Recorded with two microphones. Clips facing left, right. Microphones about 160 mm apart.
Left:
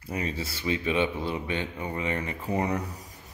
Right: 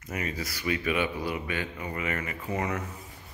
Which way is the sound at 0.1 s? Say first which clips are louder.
Left 2 dB; 30° left (ahead or behind).